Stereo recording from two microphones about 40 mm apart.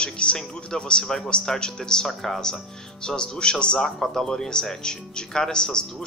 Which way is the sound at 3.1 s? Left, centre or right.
Left.